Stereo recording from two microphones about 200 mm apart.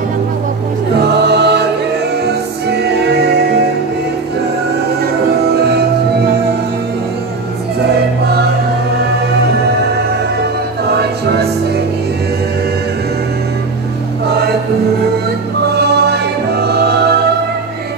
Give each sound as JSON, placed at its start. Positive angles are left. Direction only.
{"t": 1.2, "sound": "music", "side_deg": -55}
{"t": 5.5, "sound": "music", "side_deg": -55}
{"t": 10.9, "sound": "music", "side_deg": -55}
{"t": 15.7, "sound": "music", "side_deg": -55}